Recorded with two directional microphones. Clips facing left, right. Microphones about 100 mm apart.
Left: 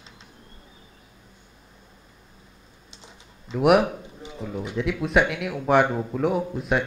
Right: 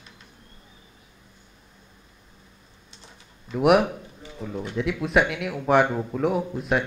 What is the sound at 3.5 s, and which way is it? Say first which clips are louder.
Speech: even; centre (ahead or behind).